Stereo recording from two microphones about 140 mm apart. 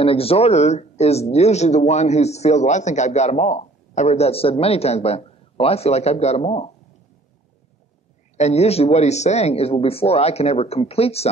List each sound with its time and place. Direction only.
0.0 s speech: 45° left (ahead or behind)
8.4 s speech: 50° left (ahead or behind)